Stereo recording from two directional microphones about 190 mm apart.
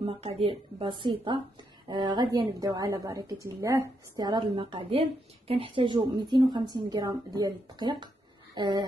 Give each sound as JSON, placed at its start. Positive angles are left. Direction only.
{"t": 0.0, "sound": "a woman's voice", "side_deg": -30}